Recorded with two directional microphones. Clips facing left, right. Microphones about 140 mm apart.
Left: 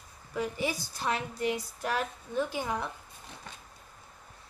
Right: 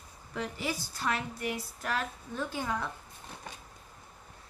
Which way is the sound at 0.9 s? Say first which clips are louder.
Left 1 dB; 20° left (ahead or behind).